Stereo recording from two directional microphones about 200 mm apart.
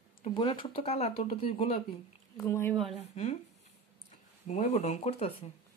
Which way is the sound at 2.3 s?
15° left (ahead or behind).